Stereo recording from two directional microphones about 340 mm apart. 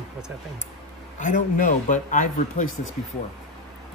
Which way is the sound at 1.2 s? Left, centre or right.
Left.